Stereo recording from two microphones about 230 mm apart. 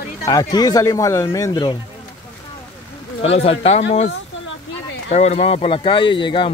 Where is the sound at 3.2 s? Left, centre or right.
Left.